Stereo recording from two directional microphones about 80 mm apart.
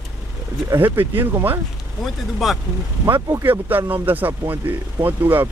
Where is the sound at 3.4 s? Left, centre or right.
Right.